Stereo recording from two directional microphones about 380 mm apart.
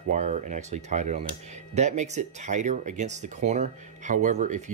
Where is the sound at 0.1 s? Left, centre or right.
Centre.